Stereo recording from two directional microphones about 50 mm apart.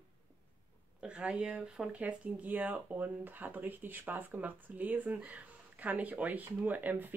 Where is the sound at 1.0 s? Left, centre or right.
Centre.